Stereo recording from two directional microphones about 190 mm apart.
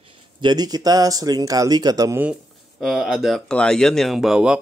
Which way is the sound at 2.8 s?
Centre (ahead or behind).